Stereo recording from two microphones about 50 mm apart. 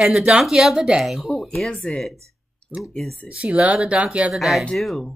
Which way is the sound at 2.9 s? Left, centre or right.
Centre.